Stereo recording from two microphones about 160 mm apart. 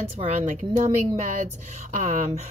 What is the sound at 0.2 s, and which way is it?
Speech, 40° right (ahead or behind).